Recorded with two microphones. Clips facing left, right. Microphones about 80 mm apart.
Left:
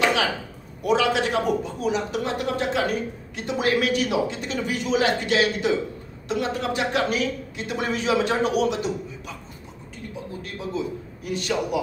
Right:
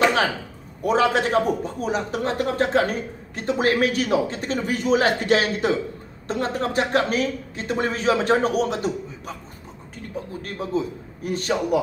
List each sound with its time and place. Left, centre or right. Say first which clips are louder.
0.8 s speech: right 2 dB; right
10.6 s speech: right 3 dB; right